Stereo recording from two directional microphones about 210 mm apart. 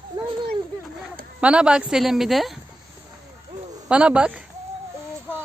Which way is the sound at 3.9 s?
5° right (ahead or behind).